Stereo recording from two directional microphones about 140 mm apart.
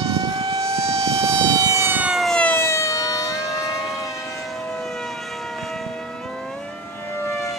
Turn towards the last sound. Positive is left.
turn(degrees=20)  # may be behind; listen again after turning